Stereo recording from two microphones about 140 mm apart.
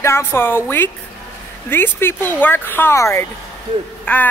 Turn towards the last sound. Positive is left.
turn(degrees=10)  # may be behind; listen again after turning